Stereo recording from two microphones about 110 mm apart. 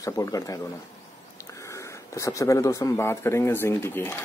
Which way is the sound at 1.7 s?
25° left (ahead or behind).